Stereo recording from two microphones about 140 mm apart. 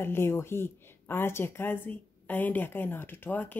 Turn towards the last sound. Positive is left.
turn(degrees=15)  # may be behind; listen again after turning